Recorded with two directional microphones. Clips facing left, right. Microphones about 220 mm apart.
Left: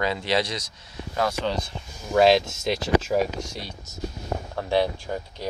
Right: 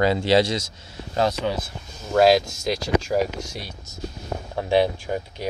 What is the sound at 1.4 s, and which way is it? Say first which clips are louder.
Speech: right 1 dB; 10° right (ahead or behind).